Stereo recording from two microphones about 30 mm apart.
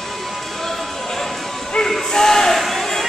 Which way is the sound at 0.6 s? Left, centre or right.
Centre.